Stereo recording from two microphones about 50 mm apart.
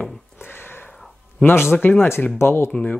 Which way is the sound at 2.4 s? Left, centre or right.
Left.